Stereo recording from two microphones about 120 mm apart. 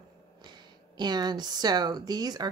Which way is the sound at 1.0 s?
35° right (ahead or behind).